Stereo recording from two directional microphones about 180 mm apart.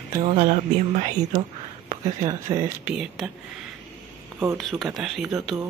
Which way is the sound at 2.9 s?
5° right (ahead or behind).